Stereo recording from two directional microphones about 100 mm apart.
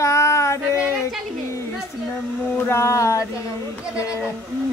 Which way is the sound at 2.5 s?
25° left (ahead or behind).